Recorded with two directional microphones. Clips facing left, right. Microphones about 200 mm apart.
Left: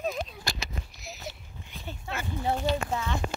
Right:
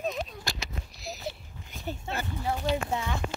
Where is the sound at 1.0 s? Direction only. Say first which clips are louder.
Right 9 dB; 35° right (ahead or behind).